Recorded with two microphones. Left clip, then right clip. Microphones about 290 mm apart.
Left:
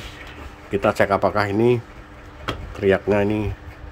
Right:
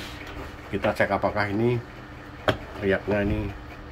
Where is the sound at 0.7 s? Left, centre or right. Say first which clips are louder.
Left 5 dB; left.